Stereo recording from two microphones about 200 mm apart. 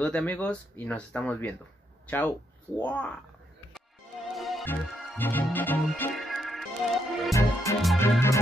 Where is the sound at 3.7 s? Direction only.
Centre (ahead or behind).